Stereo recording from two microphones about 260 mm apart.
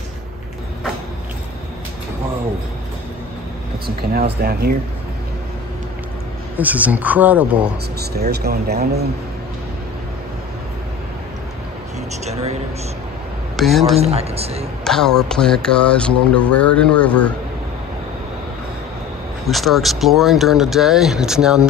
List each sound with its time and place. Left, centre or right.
3.8 s speech: right
6.6 s speech: centre
8.0 s speech: right
12.3 s a sound: right
13.6 s speech: centre
13.9 s speech: right
14.9 s speech: centre
19.4 s speech: centre